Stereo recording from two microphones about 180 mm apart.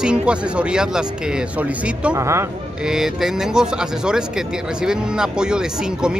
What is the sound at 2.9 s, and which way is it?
Speech, 5° right (ahead or behind).